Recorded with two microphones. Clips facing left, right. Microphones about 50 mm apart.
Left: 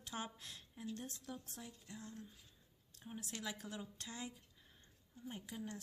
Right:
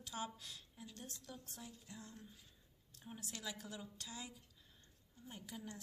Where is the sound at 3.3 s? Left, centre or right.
Left.